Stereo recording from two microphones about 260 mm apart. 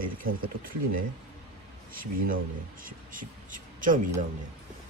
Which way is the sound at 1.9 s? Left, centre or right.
Right.